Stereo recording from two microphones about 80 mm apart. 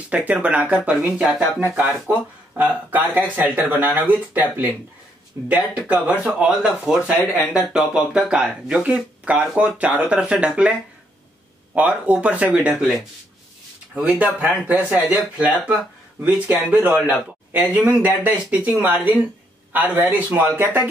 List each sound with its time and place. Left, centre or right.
0.1 s speech: centre
13.9 s speech: centre